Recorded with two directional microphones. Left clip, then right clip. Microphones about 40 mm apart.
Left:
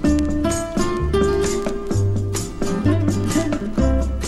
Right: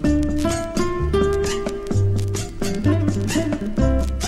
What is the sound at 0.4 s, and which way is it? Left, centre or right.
Music, left.